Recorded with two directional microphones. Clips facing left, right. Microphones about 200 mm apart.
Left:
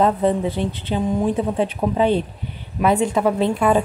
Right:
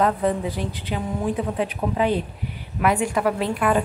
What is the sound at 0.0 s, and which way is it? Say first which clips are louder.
Speech: left 3 dB; 25° left (ahead or behind).